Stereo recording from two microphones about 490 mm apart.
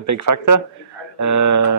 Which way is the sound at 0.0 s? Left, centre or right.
Right.